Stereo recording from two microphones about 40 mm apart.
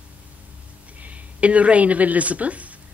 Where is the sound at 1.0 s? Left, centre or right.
Right.